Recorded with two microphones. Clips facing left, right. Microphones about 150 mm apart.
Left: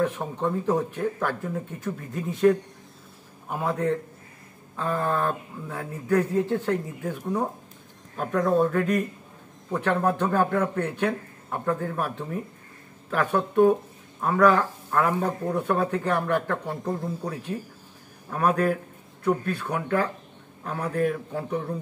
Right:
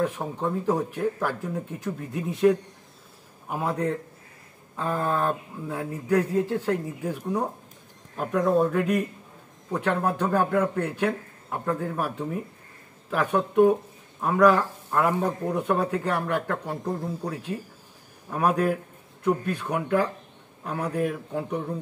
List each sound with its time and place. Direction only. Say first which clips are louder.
0.0 s a man's voice: left 1 dB; 5° right (ahead or behind)
4.7 s a man's voice: even; 15° right (ahead or behind)
18.3 s a man's voice: even; 5° right (ahead or behind)